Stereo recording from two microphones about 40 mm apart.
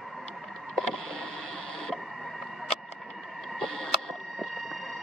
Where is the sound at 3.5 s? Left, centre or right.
Centre.